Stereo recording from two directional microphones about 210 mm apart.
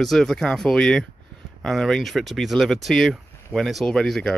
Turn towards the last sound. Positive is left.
turn(degrees=5)  # may be behind; listen again after turning